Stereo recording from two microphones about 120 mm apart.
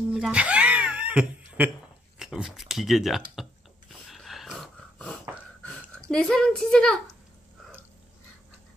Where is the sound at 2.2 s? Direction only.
5° right (ahead or behind).